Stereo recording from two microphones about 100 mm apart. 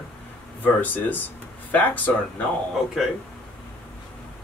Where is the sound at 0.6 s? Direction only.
15° left (ahead or behind).